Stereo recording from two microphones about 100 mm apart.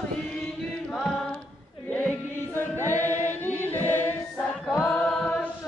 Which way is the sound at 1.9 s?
15° left (ahead or behind).